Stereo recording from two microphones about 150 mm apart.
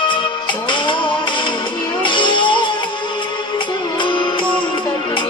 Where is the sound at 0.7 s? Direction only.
35° left (ahead or behind).